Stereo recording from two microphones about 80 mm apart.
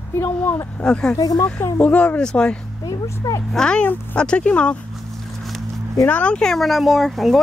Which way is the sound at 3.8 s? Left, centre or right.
Left.